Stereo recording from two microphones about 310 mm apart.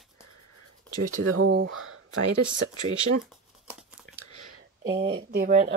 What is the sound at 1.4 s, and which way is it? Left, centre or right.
Speech, right.